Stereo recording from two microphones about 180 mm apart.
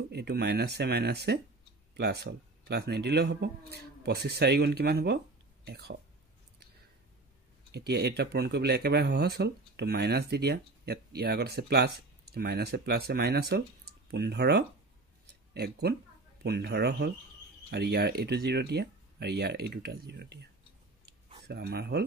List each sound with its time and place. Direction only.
0.1 s speech: 65° right (ahead or behind)
7.7 s speech: 65° right (ahead or behind)
21.5 s speech: 65° right (ahead or behind)